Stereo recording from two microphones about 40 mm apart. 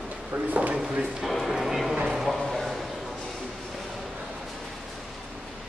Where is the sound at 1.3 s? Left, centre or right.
Centre.